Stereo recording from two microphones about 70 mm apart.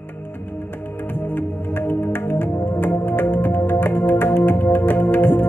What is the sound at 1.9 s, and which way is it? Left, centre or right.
Music, left.